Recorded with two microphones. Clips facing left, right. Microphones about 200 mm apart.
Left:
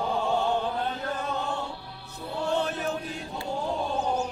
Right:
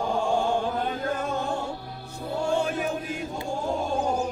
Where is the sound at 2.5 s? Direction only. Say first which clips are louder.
Right 2 dB; 10° right (ahead or behind).